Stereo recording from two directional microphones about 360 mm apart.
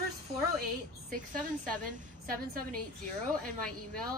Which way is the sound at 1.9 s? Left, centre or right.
Right.